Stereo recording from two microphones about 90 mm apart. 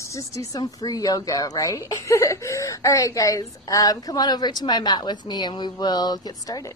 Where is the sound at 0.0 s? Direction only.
35° left (ahead or behind).